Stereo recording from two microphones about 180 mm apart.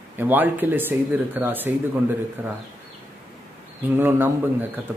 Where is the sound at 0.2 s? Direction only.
10° right (ahead or behind).